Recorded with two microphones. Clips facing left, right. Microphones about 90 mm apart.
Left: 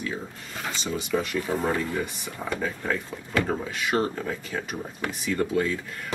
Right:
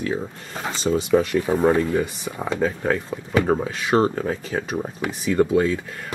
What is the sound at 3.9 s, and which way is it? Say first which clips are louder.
Speech: right 7 dB; 25° right (ahead or behind).